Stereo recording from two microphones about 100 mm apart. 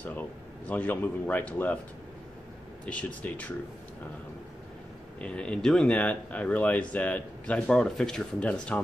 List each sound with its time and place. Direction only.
0.7 s speech: 15° left (ahead or behind)
2.8 s speech: 15° left (ahead or behind)
5.2 s speech: 10° left (ahead or behind)